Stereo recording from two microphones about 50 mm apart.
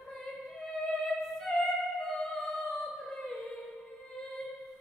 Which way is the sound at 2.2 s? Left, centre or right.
Centre.